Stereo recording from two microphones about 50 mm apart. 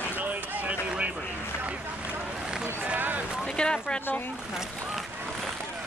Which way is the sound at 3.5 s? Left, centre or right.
Centre.